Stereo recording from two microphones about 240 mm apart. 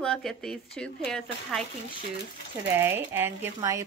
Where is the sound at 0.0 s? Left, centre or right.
Centre.